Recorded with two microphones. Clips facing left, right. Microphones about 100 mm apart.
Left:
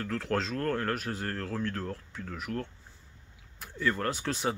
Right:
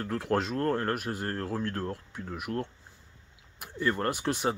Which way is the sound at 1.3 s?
25° right (ahead or behind).